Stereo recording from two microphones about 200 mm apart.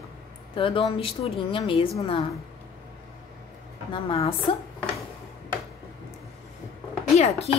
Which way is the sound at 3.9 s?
25° left (ahead or behind).